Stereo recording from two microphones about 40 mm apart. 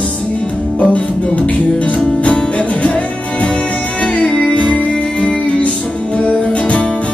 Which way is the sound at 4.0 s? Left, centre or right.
Left.